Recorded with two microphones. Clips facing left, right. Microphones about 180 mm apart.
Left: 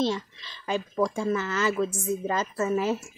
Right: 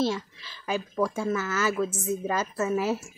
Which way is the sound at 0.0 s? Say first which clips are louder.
Even; 10° right (ahead or behind).